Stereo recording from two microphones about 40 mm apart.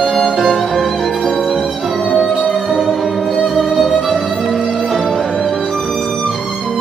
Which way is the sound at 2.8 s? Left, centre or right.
Centre.